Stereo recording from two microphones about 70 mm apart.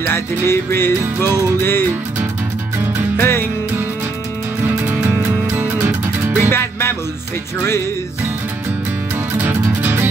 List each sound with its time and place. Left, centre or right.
0.0 s music: left
3.2 s music: left
5.0 s music: right
6.5 s music: left
9.5 s music: right